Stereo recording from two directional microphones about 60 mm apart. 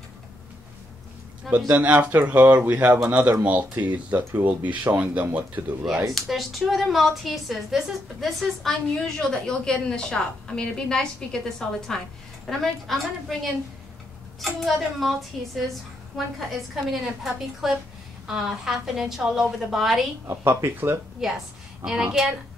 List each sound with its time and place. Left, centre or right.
1.7 s speech: right
4.2 s speech: right
4.5 s speech: right
6.1 s a woman's voice: centre
20.2 s speech: right
21.2 s a woman's voice: centre